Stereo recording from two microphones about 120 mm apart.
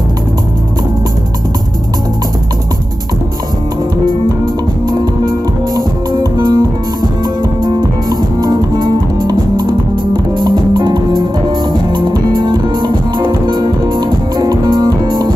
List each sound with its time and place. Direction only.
4.8 s music: 35° right (ahead or behind)
7.6 s music: 35° right (ahead or behind)